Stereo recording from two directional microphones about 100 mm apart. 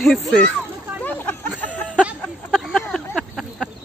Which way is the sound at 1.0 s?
20° left (ahead or behind).